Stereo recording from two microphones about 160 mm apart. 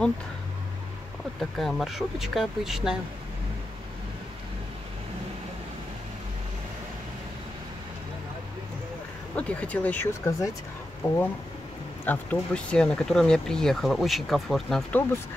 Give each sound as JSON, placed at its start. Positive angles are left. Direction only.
{"t": 1.4, "sound": "speech", "side_deg": 0}
{"t": 9.3, "sound": "speech", "side_deg": 10}